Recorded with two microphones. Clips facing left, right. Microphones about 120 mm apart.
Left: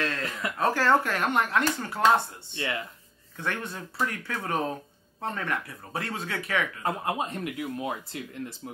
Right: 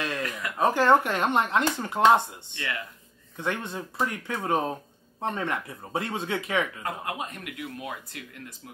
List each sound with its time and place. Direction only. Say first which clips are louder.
0.6 s speech: right 3 dB; 20° right (ahead or behind)
2.5 s speech: left 3 dB; 25° left (ahead or behind)
3.3 s speech: right 2 dB; 20° right (ahead or behind)
6.8 s speech: left 4 dB; 30° left (ahead or behind)